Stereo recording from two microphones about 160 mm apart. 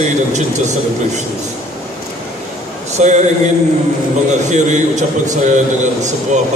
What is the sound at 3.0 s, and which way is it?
Speech, 45° right (ahead or behind).